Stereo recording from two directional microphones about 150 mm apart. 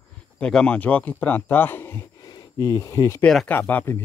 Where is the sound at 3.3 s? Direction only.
5° left (ahead or behind).